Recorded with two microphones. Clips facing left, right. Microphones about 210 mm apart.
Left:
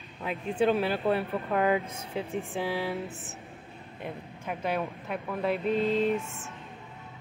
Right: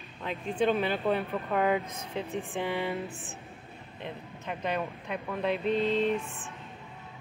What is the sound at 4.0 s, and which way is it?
Speech, 5° left (ahead or behind).